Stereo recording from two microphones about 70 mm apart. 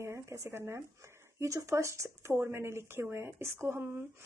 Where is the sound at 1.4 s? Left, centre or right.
Right.